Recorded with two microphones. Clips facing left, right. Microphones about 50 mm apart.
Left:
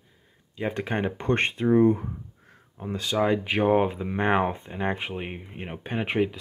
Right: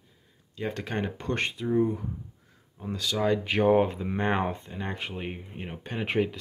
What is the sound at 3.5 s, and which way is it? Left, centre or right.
Speech, centre.